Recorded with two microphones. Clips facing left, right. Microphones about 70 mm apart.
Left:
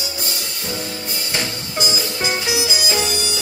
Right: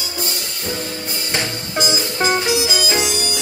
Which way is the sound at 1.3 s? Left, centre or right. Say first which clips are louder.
Right 3 dB; right.